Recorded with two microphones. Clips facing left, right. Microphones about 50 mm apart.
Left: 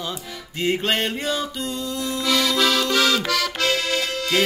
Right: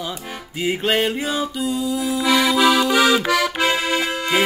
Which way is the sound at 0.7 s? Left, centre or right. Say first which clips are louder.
Right 2 dB; centre.